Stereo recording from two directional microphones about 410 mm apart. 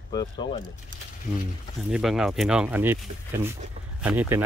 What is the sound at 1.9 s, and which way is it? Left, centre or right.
Speech, centre.